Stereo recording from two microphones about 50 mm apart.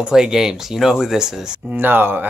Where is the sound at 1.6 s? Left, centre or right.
Right.